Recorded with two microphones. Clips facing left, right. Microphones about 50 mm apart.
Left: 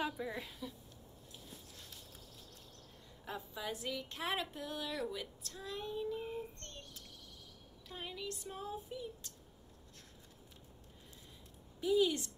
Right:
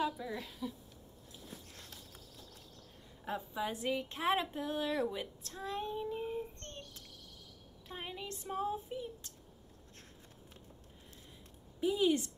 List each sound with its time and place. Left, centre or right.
0.0 s a woman's voice: centre
1.7 s walk: right
3.3 s a woman's voice: right
6.6 s child singing: right
7.9 s a woman's voice: right
11.8 s a woman's voice: right